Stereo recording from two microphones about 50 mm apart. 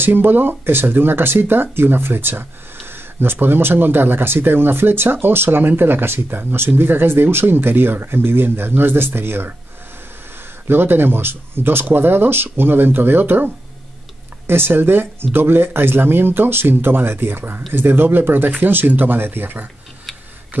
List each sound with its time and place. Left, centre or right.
0.0 s speech: right
10.7 s speech: right
14.5 s speech: right